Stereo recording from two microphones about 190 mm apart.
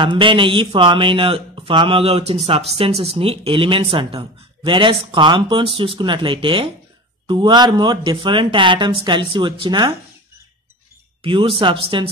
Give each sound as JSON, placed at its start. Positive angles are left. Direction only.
{"t": 0.0, "sound": "speech", "side_deg": -25}
{"t": 11.2, "sound": "speech", "side_deg": -25}